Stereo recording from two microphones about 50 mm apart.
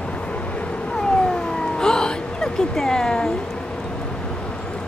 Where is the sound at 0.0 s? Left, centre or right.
Left.